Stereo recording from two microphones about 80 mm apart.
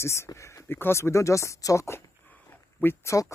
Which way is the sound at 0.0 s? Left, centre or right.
Left.